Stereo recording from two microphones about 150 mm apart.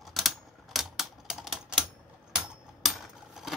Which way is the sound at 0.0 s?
Centre (ahead or behind).